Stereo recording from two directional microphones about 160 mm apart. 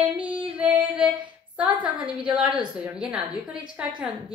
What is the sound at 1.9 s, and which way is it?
A woman's voice, 10° right (ahead or behind).